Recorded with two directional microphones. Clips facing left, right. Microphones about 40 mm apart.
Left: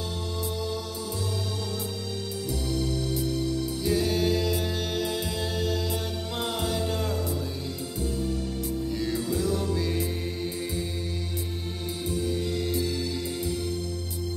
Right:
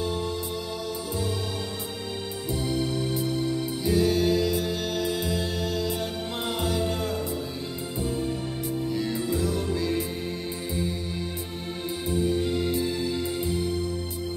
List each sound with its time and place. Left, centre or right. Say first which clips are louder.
2.5 s music: right 3 dB; right
3.8 s music: right 3 dB; centre
9.0 s music: left 2 dB; centre
12.1 s music: right 4 dB; right